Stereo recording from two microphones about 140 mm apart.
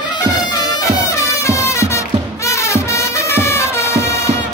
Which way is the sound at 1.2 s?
20° left (ahead or behind).